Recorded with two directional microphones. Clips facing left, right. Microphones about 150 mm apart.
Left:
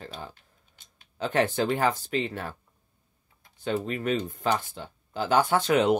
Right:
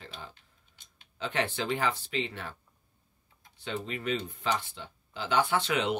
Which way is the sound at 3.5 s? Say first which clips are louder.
Left 7 dB; 45° left (ahead or behind).